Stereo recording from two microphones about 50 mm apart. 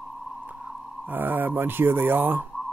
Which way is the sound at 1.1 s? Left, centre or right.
Right.